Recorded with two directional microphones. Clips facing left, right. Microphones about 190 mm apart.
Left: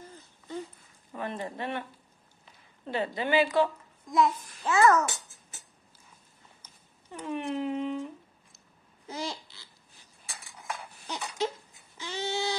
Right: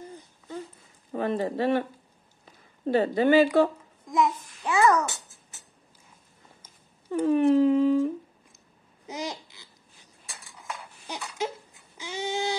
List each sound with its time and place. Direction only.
1.1 s a woman's voice: 35° right (ahead or behind)
4.1 s a child's voice: 15° right (ahead or behind)
7.1 s speech: 40° right (ahead or behind)
9.0 s babbling: 15° right (ahead or behind)
11.1 s a sound: 10° right (ahead or behind)